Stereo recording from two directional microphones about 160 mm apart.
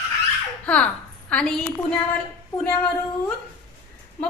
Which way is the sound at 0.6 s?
10° left (ahead or behind).